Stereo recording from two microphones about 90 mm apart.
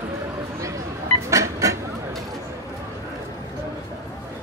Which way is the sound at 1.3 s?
35° right (ahead or behind).